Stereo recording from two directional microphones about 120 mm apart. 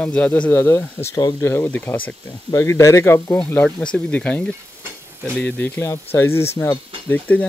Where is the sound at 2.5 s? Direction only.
25° left (ahead or behind).